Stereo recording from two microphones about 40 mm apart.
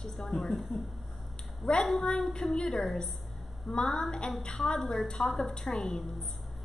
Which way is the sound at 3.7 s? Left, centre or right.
Centre.